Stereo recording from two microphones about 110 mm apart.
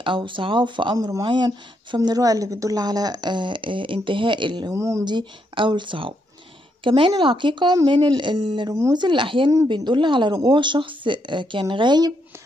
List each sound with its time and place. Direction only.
0.0 s a woman's voice: 50° right (ahead or behind)
0.9 s speech: 30° right (ahead or behind)
1.2 s a woman's voice: 45° right (ahead or behind)
2.0 s a woman's voice: 35° right (ahead or behind)
4.6 s speech: 25° right (ahead or behind)
5.0 s a woman's voice: 45° right (ahead or behind)
7.7 s a woman's voice: 35° right (ahead or behind)